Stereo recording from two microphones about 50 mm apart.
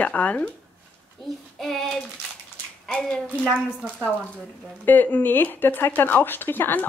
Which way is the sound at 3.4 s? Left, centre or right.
Right.